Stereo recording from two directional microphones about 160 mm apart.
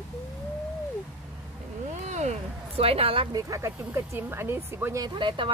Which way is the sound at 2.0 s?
45° right (ahead or behind).